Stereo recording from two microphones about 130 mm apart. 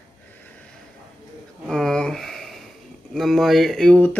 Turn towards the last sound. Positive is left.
turn(degrees=5)  # may be behind; listen again after turning